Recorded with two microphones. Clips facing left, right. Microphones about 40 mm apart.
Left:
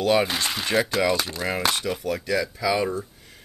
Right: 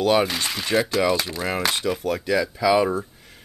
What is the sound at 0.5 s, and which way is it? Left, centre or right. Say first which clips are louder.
Speech: right 1 dB; centre.